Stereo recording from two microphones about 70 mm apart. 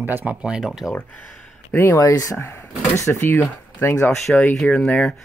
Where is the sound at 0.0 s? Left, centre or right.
Right; by 0.9 s centre.